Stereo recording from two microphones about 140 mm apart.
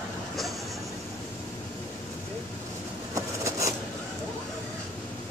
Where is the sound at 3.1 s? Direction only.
20° right (ahead or behind).